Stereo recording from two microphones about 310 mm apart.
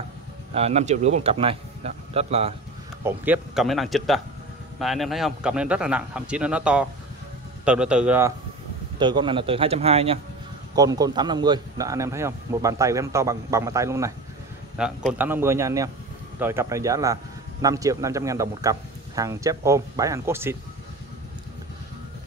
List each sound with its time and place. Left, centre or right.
0.6 s a man's voice: centre
3.0 s speech: centre
9.0 s speech: centre